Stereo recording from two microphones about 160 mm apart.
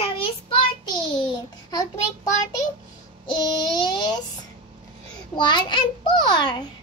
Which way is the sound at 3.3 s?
25° left (ahead or behind).